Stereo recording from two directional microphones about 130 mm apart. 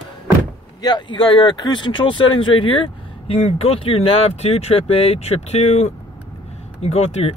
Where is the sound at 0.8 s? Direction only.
35° left (ahead or behind).